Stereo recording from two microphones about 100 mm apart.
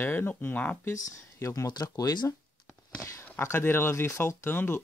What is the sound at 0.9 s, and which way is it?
Speech, 35° left (ahead or behind).